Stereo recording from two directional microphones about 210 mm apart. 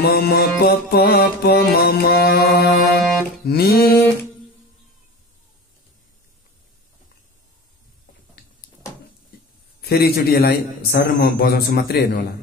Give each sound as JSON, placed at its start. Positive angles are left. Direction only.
{"t": 0.0, "sound": "music", "side_deg": 50}
{"t": 9.8, "sound": "music", "side_deg": 50}